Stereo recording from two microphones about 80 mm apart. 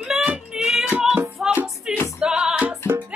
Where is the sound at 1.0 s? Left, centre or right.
Centre.